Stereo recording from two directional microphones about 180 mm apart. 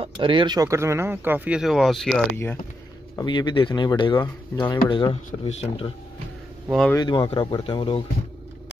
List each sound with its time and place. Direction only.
0.0 s speech: 30° right (ahead or behind); by 2.2 s centre (ahead or behind)
3.2 s speech: 25° left (ahead or behind)
6.7 s speech: 5° left (ahead or behind)
7.0 s speech: 25° left (ahead or behind)